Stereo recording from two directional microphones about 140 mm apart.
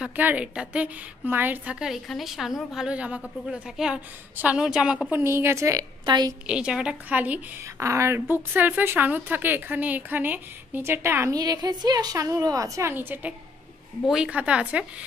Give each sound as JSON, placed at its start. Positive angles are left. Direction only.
{"t": 0.0, "sound": "a woman's voice", "side_deg": -10}
{"t": 5.1, "sound": "a woman's voice", "side_deg": -20}
{"t": 6.4, "sound": "a woman's voice", "side_deg": -5}